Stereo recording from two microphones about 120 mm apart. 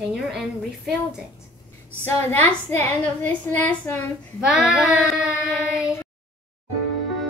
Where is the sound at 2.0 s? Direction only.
15° left (ahead or behind).